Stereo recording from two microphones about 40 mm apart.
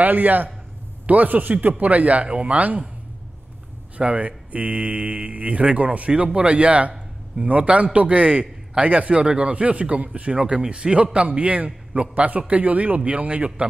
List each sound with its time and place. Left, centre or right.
0.0 s a man's voice: right
4.0 s a man's voice: right
10.3 s a man's voice: right